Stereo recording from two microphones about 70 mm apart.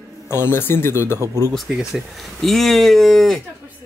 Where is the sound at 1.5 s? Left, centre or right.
Centre.